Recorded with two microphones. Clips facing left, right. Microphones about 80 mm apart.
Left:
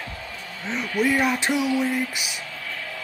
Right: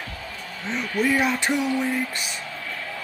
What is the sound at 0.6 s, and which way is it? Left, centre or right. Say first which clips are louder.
Speech: even; centre.